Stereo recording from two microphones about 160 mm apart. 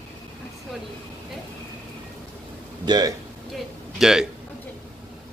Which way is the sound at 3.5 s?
5° right (ahead or behind).